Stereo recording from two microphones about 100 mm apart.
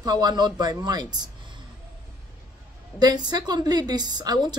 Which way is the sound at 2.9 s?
45° right (ahead or behind).